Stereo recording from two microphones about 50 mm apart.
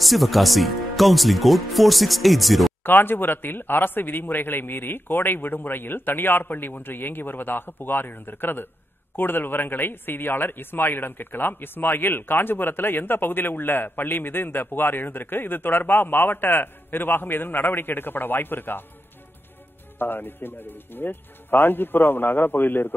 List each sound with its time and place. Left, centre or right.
0.0 s speech: centre
2.8 s speech: left
20.0 s speech: left